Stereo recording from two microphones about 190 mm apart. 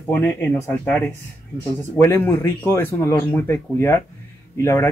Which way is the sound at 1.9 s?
10° left (ahead or behind).